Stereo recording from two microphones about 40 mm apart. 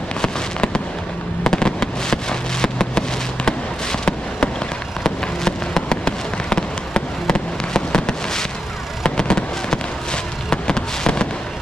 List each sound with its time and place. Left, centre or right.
0.2 s fireworks: left